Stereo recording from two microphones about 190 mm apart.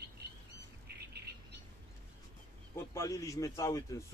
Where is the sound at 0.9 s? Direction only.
60° right (ahead or behind).